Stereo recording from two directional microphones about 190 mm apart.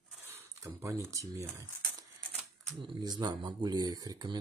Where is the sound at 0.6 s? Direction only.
15° right (ahead or behind).